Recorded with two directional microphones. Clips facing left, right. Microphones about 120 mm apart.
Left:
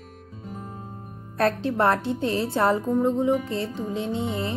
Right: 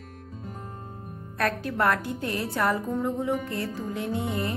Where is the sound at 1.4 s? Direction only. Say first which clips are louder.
Left 4 dB; 30° left (ahead or behind).